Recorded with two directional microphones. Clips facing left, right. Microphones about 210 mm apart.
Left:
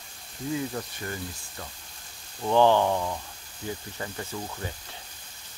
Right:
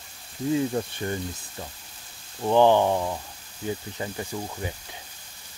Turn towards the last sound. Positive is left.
turn(degrees=-15)  # may be behind; listen again after turning